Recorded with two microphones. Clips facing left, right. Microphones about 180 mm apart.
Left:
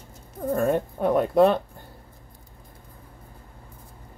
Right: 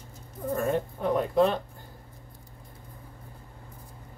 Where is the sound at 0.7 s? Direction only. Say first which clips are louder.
Left 4 dB; 65° left (ahead or behind).